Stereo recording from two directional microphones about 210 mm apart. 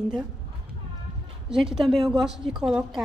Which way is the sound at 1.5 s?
Centre (ahead or behind).